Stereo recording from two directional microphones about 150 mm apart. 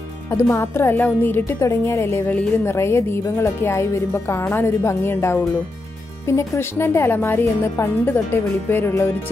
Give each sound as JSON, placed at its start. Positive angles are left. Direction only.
{"t": 0.3, "sound": "a woman's voice", "side_deg": 20}